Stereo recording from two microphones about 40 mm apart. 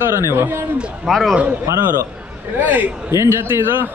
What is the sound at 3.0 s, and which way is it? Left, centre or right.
Speech, right.